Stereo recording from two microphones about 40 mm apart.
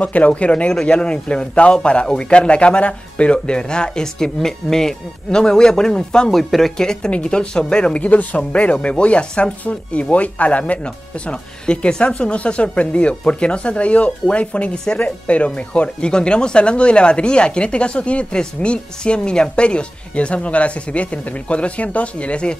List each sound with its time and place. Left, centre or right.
0.0 s speech: left; by 6.3 s centre
6.3 s speech: centre
6.8 s speech: centre
7.9 s speech: left
11.2 s speech: left